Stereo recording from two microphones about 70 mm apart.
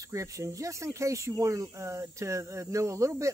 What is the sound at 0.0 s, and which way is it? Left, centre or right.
Speech, right.